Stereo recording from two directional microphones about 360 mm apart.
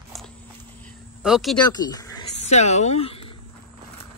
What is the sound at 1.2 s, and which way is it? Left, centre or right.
Speech, centre.